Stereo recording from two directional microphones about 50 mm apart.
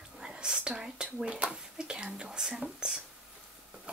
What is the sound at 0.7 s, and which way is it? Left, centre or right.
Speech, centre.